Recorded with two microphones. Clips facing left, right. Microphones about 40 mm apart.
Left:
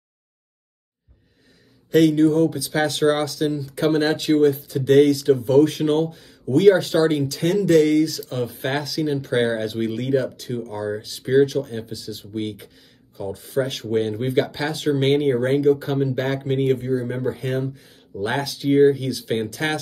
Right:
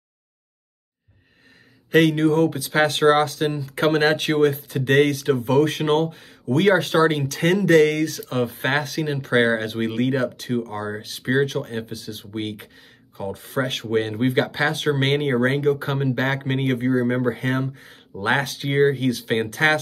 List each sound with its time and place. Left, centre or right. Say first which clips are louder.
1.9 s speech: left 1 dB; right